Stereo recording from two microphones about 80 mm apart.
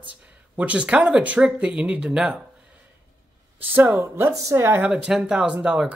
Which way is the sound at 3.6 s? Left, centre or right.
Right.